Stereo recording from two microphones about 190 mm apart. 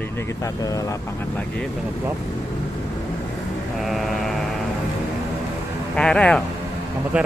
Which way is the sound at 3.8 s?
Centre (ahead or behind).